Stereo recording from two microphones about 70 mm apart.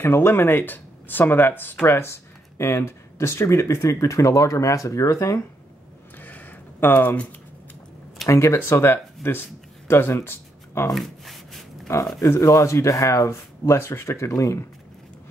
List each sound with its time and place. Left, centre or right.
0.0 s speech: left
6.1 s a sound: left
8.3 s speech: left
11.0 s rub: centre
12.2 s speech: left
14.3 s speech: left